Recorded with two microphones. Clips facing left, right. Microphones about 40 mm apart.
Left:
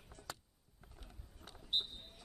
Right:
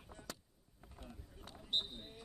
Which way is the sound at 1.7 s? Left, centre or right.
Centre.